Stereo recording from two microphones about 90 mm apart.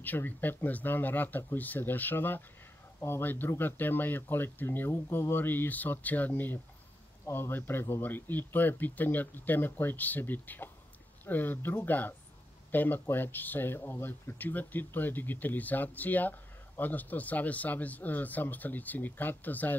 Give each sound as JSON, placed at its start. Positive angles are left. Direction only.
{"t": 0.0, "sound": "speech", "side_deg": 20}